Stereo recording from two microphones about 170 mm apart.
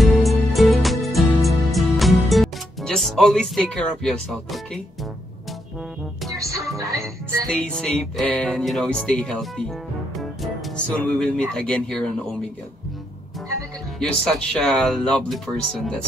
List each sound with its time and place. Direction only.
0.0 s music: centre (ahead or behind)
6.3 s music: 20° right (ahead or behind)
7.4 s music: 5° left (ahead or behind)
11.0 s music: 5° left (ahead or behind)
13.9 s music: 5° left (ahead or behind)